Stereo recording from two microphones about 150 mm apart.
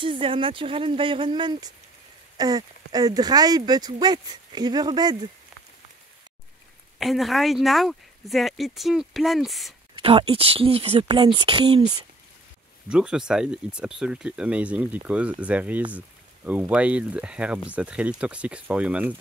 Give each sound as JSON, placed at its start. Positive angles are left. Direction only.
{"t": 0.0, "sound": "speech", "side_deg": -35}
{"t": 7.0, "sound": "speech", "side_deg": 0}
{"t": 9.9, "sound": "speech", "side_deg": -35}
{"t": 12.8, "sound": "speech", "side_deg": -5}